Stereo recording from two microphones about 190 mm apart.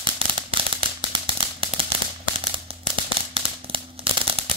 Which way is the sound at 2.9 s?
30° right (ahead or behind).